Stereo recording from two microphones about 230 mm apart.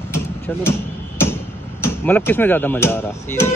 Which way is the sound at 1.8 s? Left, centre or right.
Centre.